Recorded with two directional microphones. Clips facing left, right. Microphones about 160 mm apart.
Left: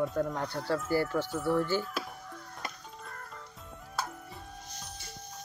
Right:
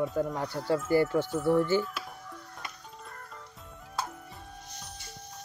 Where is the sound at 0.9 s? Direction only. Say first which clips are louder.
Right 5 dB; 20° right (ahead or behind).